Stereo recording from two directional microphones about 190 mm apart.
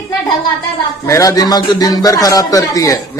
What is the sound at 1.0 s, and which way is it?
A man's voice, 15° left (ahead or behind).